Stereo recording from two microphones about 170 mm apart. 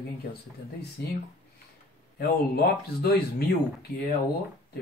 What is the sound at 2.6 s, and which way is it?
Speech, 65° left (ahead or behind).